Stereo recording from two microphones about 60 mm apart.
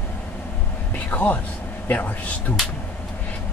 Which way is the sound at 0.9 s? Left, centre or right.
Left.